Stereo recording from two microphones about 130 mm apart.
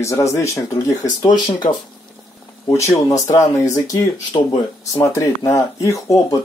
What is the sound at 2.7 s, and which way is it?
Speech, 25° left (ahead or behind).